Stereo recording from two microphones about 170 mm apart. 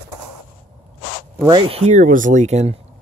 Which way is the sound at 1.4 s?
30° right (ahead or behind).